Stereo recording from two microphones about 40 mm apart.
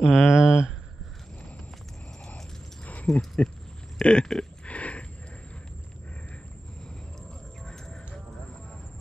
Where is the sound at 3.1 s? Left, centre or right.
Centre.